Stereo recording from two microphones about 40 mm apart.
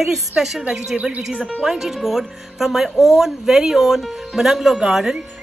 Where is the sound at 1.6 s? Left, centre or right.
Centre.